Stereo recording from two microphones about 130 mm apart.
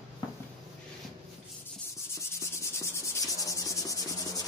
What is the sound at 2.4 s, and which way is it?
Cricket, 20° left (ahead or behind).